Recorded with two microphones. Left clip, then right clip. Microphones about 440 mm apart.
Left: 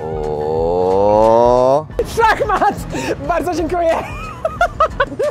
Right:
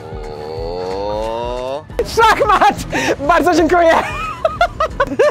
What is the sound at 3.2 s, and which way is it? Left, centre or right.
Speech, right.